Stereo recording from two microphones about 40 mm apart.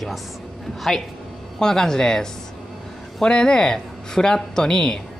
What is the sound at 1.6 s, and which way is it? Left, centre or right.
A woman's voice, centre.